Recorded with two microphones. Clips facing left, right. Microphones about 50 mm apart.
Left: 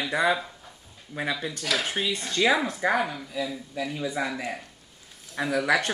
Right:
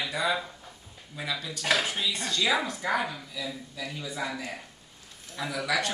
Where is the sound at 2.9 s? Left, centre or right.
Centre.